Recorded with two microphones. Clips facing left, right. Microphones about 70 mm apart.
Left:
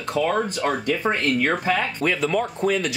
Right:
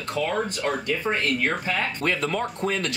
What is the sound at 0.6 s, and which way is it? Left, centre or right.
Speech, left.